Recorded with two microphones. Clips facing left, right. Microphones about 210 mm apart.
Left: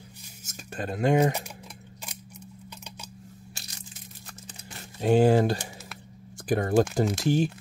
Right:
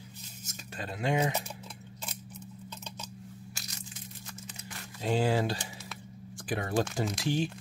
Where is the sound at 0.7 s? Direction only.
50° left (ahead or behind).